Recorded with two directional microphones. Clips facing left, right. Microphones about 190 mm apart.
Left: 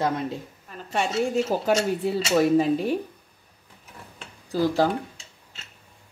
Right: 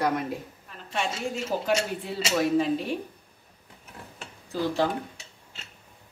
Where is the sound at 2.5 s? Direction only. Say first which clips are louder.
Left 4 dB; 40° left (ahead or behind).